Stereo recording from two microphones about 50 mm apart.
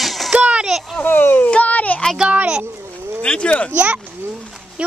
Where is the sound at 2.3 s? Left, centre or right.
Centre.